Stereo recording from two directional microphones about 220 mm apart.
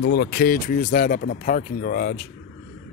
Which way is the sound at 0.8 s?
35° left (ahead or behind).